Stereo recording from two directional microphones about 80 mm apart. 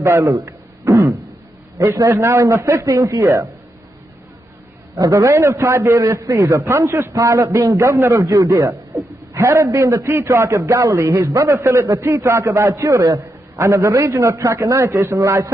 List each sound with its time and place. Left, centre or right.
0.0 s a man's voice: right
0.5 s a sound: right
1.8 s a man's voice: right
4.9 s a man's voice: right